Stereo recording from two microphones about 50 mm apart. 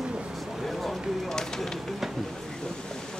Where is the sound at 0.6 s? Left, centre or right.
Centre.